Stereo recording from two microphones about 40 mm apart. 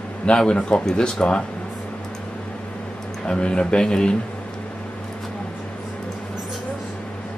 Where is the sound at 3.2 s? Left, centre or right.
Left.